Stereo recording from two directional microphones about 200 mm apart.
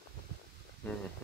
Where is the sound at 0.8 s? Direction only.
5° left (ahead or behind).